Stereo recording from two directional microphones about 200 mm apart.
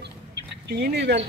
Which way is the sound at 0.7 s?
50° right (ahead or behind).